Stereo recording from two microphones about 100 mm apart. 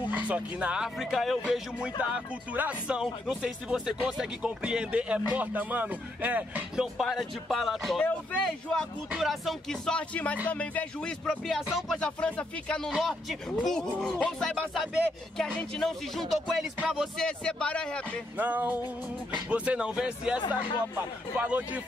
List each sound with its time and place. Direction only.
0.1 s speech: 15° right (ahead or behind)
0.9 s speech: centre (ahead or behind)
2.0 s speech: 15° right (ahead or behind)
7.0 s speech: centre (ahead or behind)
8.0 s speech: 15° left (ahead or behind)
12.9 s speech: centre (ahead or behind)
18.4 s speech: 15° right (ahead or behind)
20.3 s speech: 50° left (ahead or behind)
21.4 s speech: 15° right (ahead or behind)